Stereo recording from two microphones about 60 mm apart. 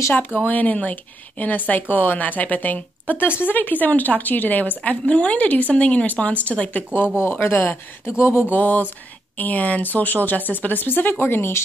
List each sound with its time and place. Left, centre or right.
0.5 s a woman's voice: left
7.2 s speech: left
8.2 s speech: left
8.5 s speech: left